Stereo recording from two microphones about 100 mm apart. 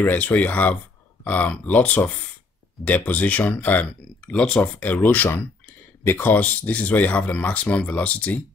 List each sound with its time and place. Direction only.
0.0 s speech: 15° left (ahead or behind)